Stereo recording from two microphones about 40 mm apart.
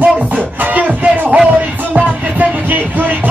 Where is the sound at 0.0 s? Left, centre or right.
Right.